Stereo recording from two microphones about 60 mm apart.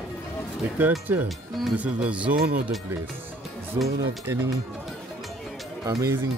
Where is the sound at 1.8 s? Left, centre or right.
Right.